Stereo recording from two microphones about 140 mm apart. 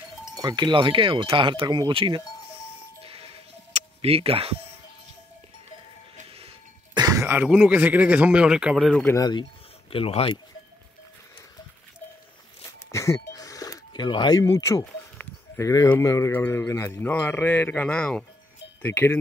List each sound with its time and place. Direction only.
0.3 s speech: 30° right (ahead or behind)
3.0 s music: 45° right (ahead or behind)
3.7 s speech: 45° right (ahead or behind)
6.2 s a sound: 40° right (ahead or behind)
7.0 s throat clearing: 25° right (ahead or behind)
7.4 s speech: 10° right (ahead or behind)
9.1 s speech: 30° left (ahead or behind)
12.6 s a sound: 20° left (ahead or behind)
15.1 s a sound: 10° left (ahead or behind)
15.6 s speech: 25° left (ahead or behind)